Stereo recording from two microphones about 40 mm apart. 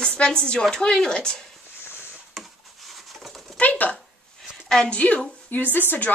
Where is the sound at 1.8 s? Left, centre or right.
Left.